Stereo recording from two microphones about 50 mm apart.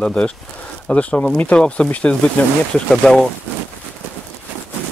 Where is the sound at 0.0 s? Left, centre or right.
Centre.